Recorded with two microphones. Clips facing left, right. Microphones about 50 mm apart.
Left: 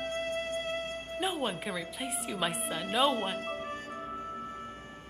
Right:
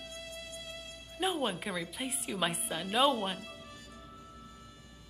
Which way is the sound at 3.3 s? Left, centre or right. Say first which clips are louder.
Left 10 dB; left.